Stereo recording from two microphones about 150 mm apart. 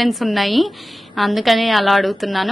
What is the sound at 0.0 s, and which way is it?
A woman's voice, centre (ahead or behind).